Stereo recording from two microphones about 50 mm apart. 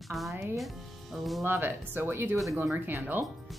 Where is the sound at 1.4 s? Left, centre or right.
Right.